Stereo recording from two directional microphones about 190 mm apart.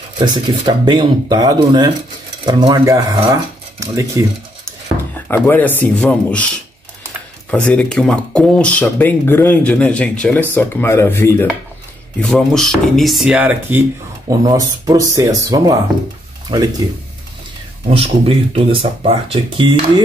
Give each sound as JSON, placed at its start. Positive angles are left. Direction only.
{"t": 0.2, "sound": "speech", "side_deg": -25}
{"t": 5.3, "sound": "speech", "side_deg": 10}
{"t": 7.5, "sound": "speech", "side_deg": 5}
{"t": 17.8, "sound": "speech", "side_deg": -30}